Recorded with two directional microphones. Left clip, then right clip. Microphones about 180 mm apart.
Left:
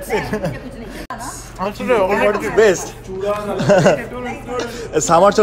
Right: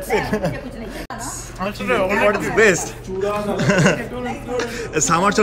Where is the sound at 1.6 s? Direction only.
55° left (ahead or behind).